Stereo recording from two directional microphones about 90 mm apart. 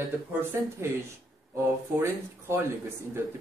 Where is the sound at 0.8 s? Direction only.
30° right (ahead or behind).